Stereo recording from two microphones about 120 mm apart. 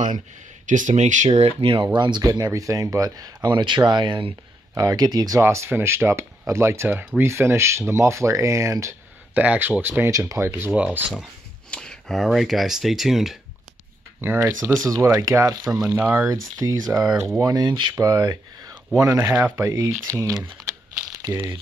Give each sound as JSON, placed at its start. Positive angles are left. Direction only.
{"t": 0.7, "sound": "speech", "side_deg": -90}
{"t": 2.0, "sound": "speech", "side_deg": -40}
{"t": 5.4, "sound": "speech", "side_deg": -20}
{"t": 9.3, "sound": "speech", "side_deg": -10}
{"t": 10.1, "sound": "speech", "side_deg": -25}
{"t": 10.5, "sound": "speech", "side_deg": -10}
{"t": 11.7, "sound": "speech", "side_deg": 5}
{"t": 14.2, "sound": "speech", "side_deg": -20}
{"t": 15.9, "sound": "speech", "side_deg": -20}
{"t": 16.5, "sound": "speech", "side_deg": -30}